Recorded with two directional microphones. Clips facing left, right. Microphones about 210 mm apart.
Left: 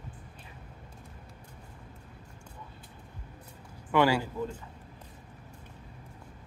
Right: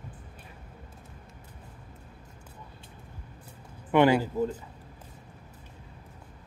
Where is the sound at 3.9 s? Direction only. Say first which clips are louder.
Right 4 dB; 20° right (ahead or behind).